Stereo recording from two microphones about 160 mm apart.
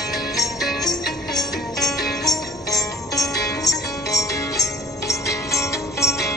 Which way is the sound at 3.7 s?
20° left (ahead or behind).